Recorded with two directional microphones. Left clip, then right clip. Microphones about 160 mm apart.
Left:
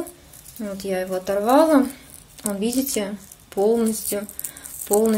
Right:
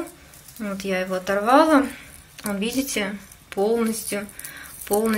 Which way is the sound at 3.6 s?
30° left (ahead or behind).